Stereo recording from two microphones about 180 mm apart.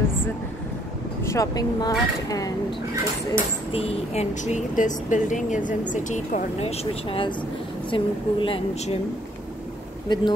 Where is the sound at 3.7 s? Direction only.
35° left (ahead or behind).